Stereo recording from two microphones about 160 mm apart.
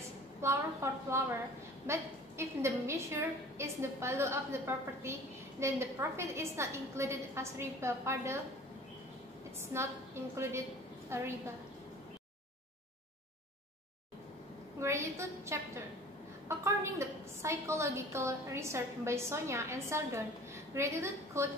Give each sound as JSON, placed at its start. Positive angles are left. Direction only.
{"t": 0.4, "sound": "a woman's voice", "side_deg": -15}
{"t": 9.7, "sound": "a woman's voice", "side_deg": -15}
{"t": 14.8, "sound": "a woman's voice", "side_deg": -15}